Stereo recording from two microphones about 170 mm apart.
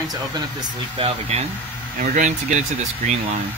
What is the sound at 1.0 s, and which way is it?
Speech, 40° right (ahead or behind).